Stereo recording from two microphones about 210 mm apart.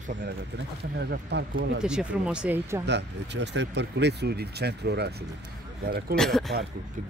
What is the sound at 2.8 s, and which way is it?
Speech, 55° right (ahead or behind).